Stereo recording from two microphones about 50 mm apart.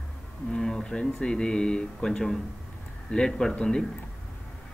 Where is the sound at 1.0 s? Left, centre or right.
Centre.